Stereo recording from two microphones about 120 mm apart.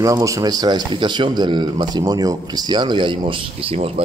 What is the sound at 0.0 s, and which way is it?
Speech, 25° right (ahead or behind).